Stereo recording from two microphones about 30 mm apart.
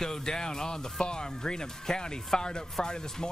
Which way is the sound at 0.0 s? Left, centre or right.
Left.